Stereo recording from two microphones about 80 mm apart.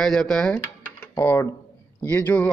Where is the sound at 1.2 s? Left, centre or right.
Left.